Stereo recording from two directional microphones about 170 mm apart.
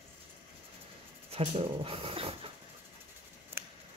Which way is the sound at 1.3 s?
35° right (ahead or behind).